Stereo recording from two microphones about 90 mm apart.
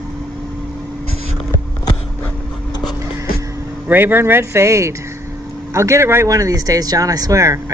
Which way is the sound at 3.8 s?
25° right (ahead or behind).